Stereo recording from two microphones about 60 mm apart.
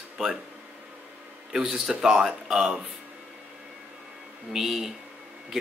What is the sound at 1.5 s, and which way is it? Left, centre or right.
Speech, centre.